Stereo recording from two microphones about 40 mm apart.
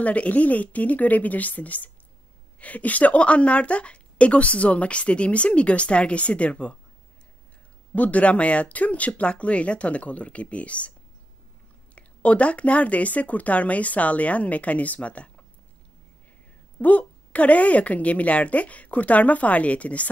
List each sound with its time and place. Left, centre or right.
0.0 s a woman's voice: left
7.9 s a woman's voice: left
11.9 s a woman's voice: left
16.8 s a woman's voice: left